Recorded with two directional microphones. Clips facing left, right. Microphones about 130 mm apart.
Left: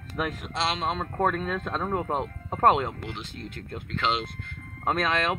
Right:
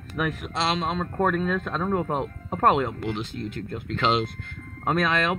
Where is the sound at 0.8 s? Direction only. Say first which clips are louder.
Right 1 dB; 5° left (ahead or behind).